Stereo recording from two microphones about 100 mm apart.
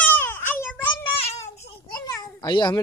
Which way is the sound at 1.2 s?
90° left.